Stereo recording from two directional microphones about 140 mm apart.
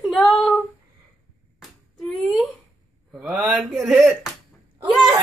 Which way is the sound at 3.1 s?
Centre (ahead or behind).